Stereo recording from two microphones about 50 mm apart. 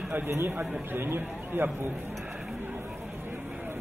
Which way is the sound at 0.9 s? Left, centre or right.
Right.